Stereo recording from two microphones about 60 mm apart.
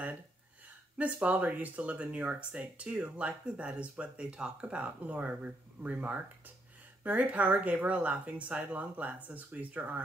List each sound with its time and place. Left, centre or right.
0.9 s speech: right